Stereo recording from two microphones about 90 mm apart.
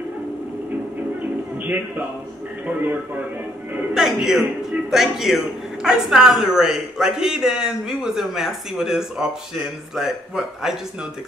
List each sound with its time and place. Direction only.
2.6 s speech: 20° right (ahead or behind)
3.9 s a woman's voice: 5° right (ahead or behind)